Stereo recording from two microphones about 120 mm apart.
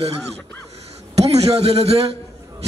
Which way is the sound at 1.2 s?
60° right (ahead or behind).